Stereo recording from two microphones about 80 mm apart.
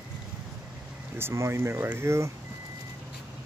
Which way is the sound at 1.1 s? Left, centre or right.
Right.